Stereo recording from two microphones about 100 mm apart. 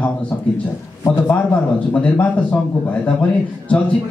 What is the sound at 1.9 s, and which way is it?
Speech, 15° left (ahead or behind).